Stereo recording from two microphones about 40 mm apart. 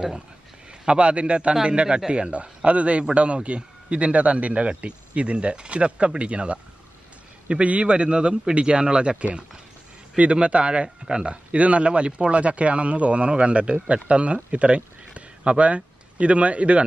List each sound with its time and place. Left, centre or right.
0.8 s a man's voice: right
10.1 s a man's voice: right